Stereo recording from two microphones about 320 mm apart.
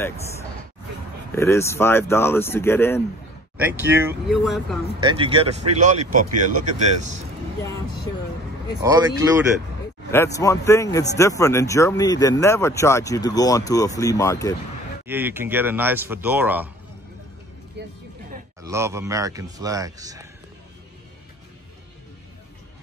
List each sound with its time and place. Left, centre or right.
1.3 s speech: centre
3.5 s speech: centre
5.0 s speech: centre
8.8 s speech: centre
10.1 s speech: centre
15.0 s speech: centre
17.8 s speech: right
18.6 s speech: centre